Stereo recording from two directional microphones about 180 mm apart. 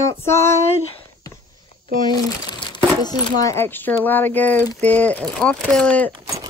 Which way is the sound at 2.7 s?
25° left (ahead or behind).